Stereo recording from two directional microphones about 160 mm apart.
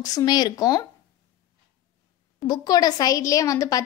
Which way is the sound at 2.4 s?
25° left (ahead or behind).